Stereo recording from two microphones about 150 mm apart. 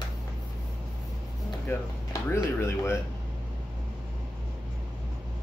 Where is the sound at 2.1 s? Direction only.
15° left (ahead or behind).